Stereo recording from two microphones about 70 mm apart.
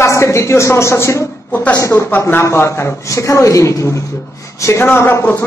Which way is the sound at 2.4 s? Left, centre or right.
Left.